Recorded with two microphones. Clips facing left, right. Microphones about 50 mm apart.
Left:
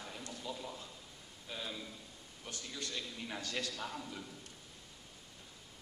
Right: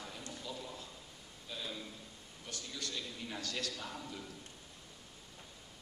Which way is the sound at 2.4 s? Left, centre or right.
Left.